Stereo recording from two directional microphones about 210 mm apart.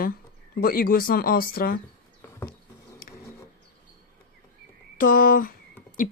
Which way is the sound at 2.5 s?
45° left (ahead or behind).